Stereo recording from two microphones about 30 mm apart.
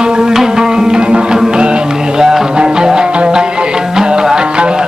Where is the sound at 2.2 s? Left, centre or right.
Centre.